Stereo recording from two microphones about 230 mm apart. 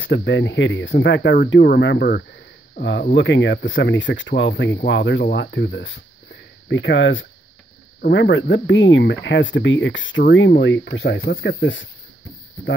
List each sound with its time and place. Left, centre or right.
0.0 s speech: left